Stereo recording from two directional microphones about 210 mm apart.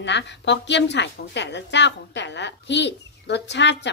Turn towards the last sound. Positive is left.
turn(degrees=55)  # may be behind; listen again after turning